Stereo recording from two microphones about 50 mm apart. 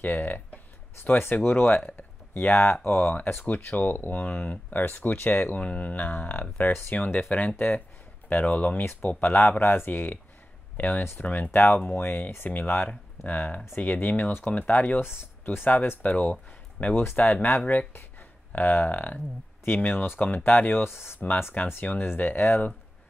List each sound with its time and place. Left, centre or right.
0.0 s speech: left
1.7 s speech: left
2.3 s speech: left
3.7 s speech: left
7.2 s speech: left
9.2 s speech: left
10.8 s speech: left
12.4 s speech: left
15.0 s speech: left
16.9 s speech: left
20.8 s speech: left
21.6 s speech: left
21.9 s speech: left